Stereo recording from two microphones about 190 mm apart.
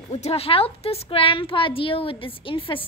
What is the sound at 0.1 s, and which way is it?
A woman's voice, 35° left (ahead or behind).